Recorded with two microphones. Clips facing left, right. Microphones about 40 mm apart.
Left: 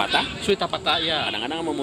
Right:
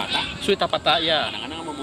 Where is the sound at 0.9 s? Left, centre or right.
Centre.